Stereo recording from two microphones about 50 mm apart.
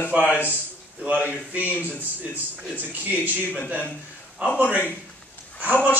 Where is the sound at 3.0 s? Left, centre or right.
Right.